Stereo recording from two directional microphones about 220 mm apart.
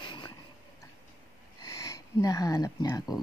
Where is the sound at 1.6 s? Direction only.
15° left (ahead or behind).